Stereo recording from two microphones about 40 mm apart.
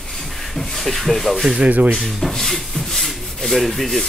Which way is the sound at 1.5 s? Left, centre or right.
Right.